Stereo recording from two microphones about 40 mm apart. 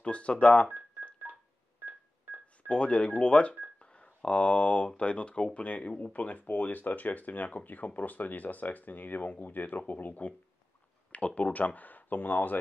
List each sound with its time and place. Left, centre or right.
0.0 s speech: left
1.3 s telephone dialing: right
2.7 s speech: left
11.1 s speech: left